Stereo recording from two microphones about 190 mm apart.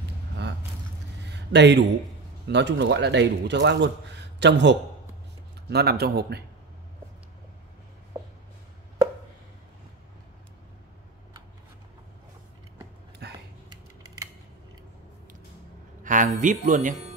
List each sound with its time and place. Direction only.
1.3 s a man's voice: 65° right (ahead or behind)
13.2 s a sound: 60° right (ahead or behind)
16.0 s speech: 45° right (ahead or behind)